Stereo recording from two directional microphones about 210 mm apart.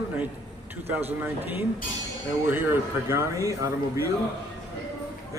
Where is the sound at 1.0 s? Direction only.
10° right (ahead or behind).